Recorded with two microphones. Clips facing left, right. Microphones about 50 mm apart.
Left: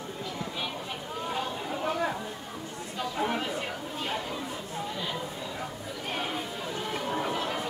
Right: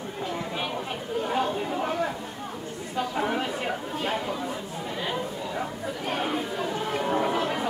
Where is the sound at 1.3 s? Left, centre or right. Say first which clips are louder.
Right 6 dB; right.